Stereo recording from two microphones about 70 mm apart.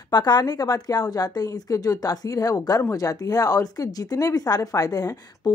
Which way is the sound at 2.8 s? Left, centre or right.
Left.